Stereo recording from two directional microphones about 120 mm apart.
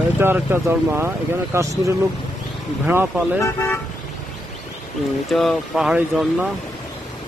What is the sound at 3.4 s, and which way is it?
Speech, 20° left (ahead or behind).